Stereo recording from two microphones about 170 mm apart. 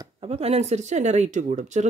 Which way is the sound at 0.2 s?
35° right (ahead or behind).